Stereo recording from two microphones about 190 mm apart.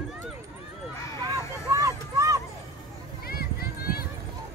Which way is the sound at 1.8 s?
15° right (ahead or behind).